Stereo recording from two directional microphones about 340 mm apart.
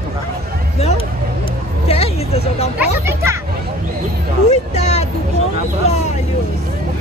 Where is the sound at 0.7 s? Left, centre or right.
Centre.